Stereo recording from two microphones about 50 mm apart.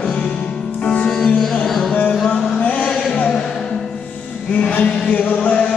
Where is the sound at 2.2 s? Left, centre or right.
Left.